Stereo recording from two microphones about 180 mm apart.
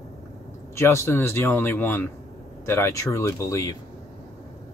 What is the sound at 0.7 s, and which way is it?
Speech, 15° left (ahead or behind).